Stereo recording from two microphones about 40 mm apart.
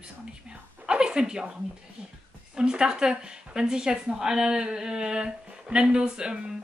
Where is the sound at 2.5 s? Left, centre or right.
Right.